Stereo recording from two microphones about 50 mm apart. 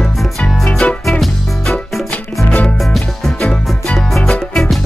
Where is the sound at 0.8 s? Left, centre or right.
Left.